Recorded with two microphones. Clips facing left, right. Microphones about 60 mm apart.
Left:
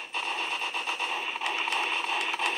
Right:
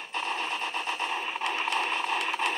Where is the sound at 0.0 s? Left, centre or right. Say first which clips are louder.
Right 1 dB; centre.